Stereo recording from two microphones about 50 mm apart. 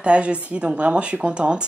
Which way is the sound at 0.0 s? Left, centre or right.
Right.